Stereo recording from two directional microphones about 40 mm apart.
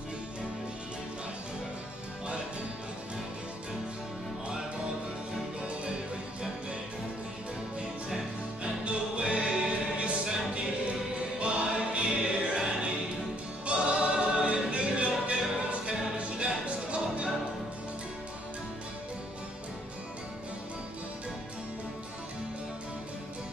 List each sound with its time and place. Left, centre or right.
8.8 s music: right
11.3 s music: right
13.7 s music: right